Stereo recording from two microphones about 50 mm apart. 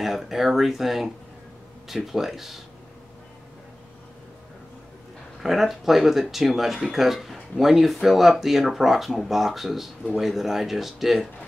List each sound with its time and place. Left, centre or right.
0.0 s speech: centre
5.4 s speech: centre